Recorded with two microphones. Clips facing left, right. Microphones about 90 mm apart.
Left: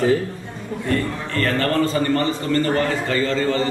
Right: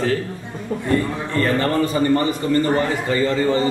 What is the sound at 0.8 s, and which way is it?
A man's voice, 15° right (ahead or behind).